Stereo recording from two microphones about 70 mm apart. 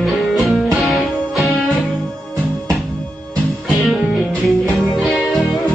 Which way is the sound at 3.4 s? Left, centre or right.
Centre.